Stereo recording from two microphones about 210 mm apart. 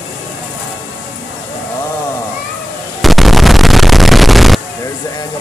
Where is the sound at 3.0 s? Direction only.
Centre (ahead or behind).